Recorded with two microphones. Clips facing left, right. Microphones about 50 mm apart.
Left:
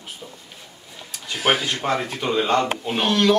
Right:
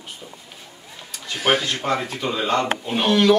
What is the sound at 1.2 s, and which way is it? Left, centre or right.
Speech, centre.